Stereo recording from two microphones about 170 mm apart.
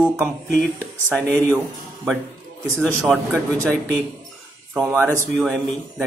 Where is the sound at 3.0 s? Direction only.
10° right (ahead or behind).